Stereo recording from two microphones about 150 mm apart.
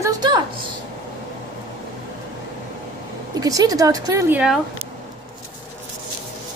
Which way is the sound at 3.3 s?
25° right (ahead or behind).